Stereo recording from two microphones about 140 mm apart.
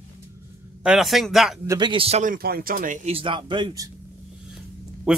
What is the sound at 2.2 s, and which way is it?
Speech, 85° right.